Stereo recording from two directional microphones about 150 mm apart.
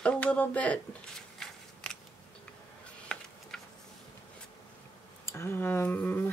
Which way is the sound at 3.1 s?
5° left (ahead or behind).